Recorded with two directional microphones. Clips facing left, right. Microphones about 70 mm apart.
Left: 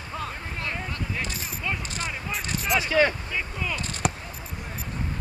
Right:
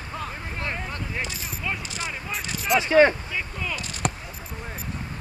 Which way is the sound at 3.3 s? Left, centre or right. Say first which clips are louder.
Even; centre.